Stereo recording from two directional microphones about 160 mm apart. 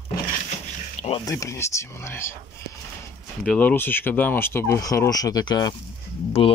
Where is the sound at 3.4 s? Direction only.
10° left (ahead or behind).